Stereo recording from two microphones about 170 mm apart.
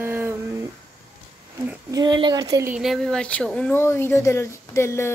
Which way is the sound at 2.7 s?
Centre (ahead or behind).